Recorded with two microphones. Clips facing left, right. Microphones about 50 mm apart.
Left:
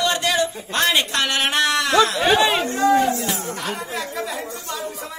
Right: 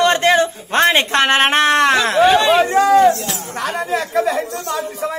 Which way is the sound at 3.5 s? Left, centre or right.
Right.